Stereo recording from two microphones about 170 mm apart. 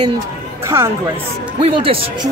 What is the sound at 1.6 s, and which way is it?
Speech, 30° right (ahead or behind).